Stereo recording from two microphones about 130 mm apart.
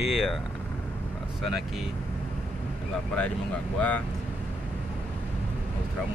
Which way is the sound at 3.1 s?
10° left (ahead or behind).